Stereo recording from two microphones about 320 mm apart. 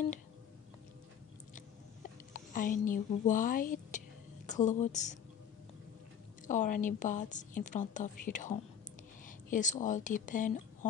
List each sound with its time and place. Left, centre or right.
2.3 s a woman's voice: left
6.4 s a woman's voice: left